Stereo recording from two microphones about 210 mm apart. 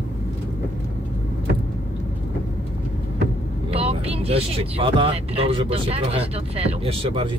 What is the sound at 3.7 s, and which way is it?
Speech, 30° right (ahead or behind).